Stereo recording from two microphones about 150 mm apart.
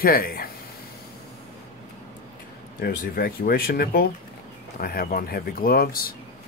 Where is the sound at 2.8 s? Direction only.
80° left.